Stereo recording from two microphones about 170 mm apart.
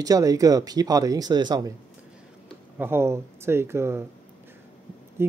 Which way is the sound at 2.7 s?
15° right (ahead or behind).